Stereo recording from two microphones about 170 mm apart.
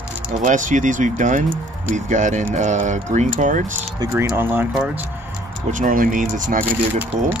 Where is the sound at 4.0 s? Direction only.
15° right (ahead or behind).